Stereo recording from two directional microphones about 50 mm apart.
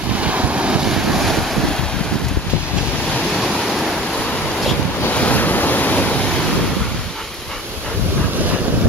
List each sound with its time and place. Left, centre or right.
0.2 s boat: right
0.8 s waves: centre
5.1 s waves: left